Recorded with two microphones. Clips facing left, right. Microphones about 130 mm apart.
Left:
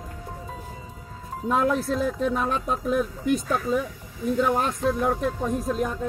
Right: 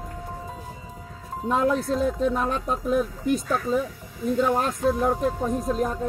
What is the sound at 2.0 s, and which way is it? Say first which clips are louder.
Speech: right 2 dB; 30° right (ahead or behind).